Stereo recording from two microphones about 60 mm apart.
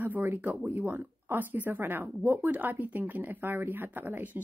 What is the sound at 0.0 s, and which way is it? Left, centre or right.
Speech, right.